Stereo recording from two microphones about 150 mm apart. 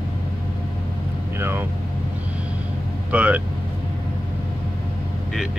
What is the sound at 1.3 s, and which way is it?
Vehicle, 15° right (ahead or behind).